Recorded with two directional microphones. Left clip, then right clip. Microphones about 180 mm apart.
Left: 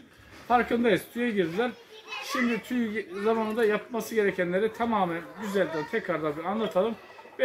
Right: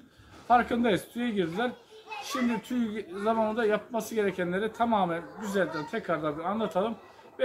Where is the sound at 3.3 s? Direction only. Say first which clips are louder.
Left 1 dB; 20° right (ahead or behind).